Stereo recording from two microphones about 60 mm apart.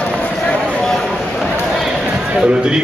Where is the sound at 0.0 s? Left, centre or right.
Centre.